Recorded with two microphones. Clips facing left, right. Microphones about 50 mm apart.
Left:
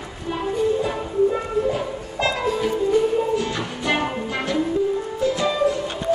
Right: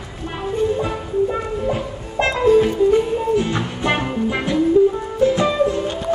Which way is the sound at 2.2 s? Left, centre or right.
Right.